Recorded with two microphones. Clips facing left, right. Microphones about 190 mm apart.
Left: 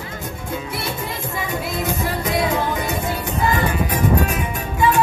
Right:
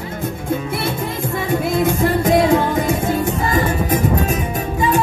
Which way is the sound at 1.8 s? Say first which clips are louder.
Right 6 dB; 55° right (ahead or behind).